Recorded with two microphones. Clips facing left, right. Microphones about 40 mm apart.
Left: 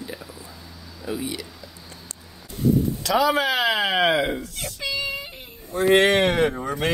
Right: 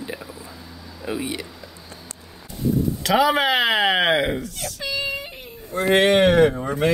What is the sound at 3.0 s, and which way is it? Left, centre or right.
Speech, right.